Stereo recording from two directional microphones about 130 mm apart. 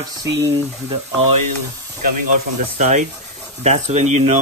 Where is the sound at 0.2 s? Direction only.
20° right (ahead or behind).